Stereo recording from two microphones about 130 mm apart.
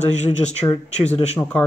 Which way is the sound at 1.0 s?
55° left (ahead or behind).